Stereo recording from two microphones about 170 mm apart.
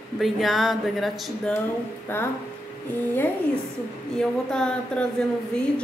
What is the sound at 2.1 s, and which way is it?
Speech, 15° left (ahead or behind).